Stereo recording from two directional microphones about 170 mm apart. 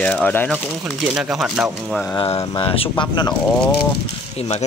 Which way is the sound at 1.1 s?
5° right (ahead or behind).